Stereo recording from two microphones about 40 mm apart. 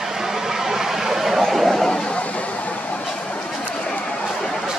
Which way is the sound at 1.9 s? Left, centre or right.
Centre.